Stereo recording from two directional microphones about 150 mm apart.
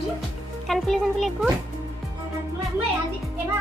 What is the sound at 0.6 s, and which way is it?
Speech, centre (ahead or behind).